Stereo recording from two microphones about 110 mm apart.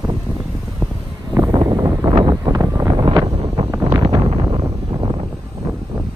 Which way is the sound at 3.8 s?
40° right (ahead or behind).